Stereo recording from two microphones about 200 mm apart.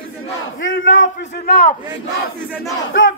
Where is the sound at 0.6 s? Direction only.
70° left (ahead or behind).